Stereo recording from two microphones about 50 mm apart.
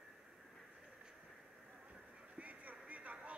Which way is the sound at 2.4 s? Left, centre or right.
Right.